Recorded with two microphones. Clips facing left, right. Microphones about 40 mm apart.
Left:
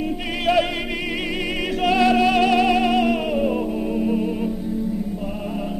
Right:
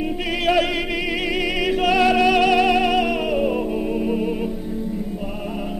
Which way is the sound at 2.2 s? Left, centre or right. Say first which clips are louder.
Right 1 dB; right.